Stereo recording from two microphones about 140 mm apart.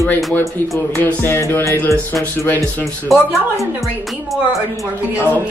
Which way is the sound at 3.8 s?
Centre (ahead or behind).